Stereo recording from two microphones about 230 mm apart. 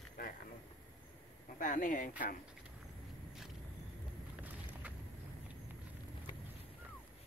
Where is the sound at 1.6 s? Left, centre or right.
Left.